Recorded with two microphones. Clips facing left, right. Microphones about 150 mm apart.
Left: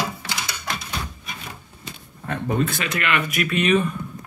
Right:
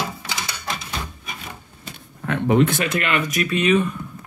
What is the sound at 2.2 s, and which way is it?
Speech, 80° right.